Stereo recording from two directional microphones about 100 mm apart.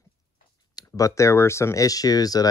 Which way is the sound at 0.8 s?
35° left (ahead or behind).